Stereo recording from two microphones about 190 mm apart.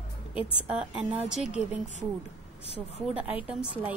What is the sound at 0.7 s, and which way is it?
A woman's voice, 5° right (ahead or behind).